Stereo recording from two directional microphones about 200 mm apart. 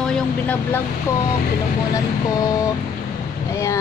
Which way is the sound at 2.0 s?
15° left (ahead or behind).